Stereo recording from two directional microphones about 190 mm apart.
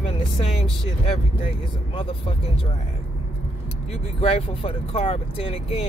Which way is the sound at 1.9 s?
30° left (ahead or behind).